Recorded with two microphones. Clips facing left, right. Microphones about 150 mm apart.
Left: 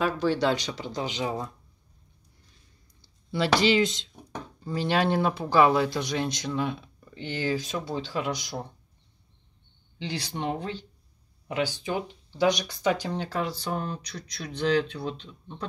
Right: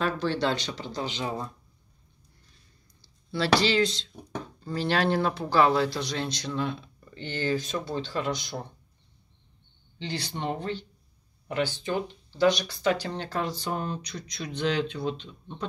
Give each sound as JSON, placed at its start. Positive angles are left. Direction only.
{"t": 0.0, "sound": "speech", "side_deg": 10}
{"t": 3.3, "sound": "speech", "side_deg": 15}
{"t": 9.9, "sound": "speech", "side_deg": 10}